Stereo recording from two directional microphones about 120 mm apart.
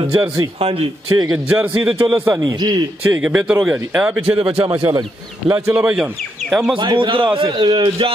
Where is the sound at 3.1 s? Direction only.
10° right (ahead or behind).